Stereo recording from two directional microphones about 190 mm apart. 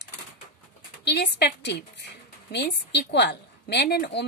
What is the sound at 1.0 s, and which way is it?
A woman's voice, 60° left (ahead or behind).